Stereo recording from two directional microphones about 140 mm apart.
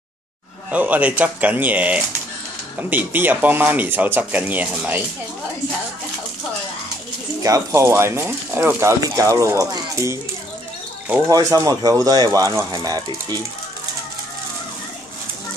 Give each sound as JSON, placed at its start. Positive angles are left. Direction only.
{"t": 0.7, "sound": "speech", "side_deg": -10}
{"t": 7.4, "sound": "speech", "side_deg": -20}
{"t": 11.2, "sound": "speech", "side_deg": -25}